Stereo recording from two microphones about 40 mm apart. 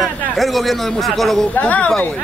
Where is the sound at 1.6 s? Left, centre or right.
Left.